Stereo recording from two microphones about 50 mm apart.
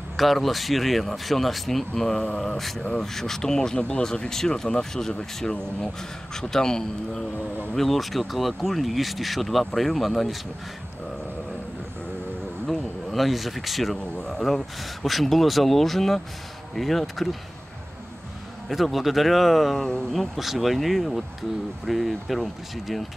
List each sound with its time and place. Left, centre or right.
0.2 s speech: centre
7.3 s speech: right
7.7 s speech: centre
12.6 s speech: centre
18.7 s speech: centre